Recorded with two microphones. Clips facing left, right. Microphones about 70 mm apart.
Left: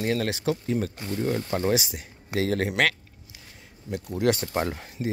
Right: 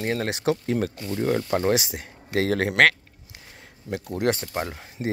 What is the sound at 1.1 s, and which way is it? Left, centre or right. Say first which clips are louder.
Speech: right 3 dB; right.